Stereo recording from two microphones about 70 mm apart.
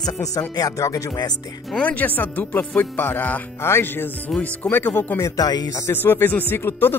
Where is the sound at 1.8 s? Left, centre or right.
Left.